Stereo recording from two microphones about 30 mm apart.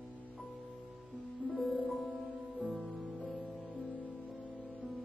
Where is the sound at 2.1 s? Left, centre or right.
Right.